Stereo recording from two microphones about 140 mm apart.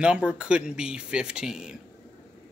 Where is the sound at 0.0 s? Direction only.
5° right (ahead or behind).